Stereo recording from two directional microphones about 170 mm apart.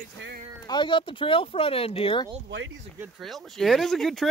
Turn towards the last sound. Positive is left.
turn(degrees=0)  # may be behind; listen again after turning